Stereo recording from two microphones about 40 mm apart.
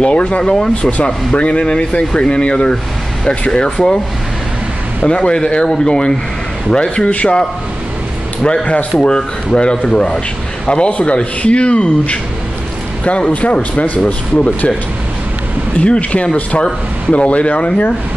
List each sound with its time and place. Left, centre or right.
0.0 s speech: left
5.0 s speech: left
7.1 s speech: left
8.9 s speech: centre
10.7 s speech: left
15.8 s speech: left